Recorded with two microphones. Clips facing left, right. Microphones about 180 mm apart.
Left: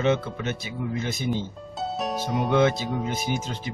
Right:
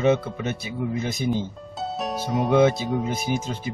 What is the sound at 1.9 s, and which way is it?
Speech, centre (ahead or behind).